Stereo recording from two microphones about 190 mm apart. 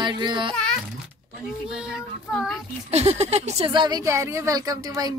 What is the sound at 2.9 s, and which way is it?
Speech, 35° right (ahead or behind).